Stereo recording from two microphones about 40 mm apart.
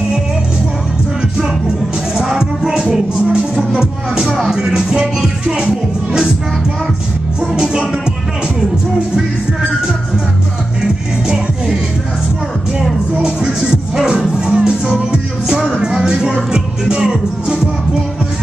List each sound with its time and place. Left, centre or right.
2.1 s music: centre
7.5 s music: centre
13.2 s music: centre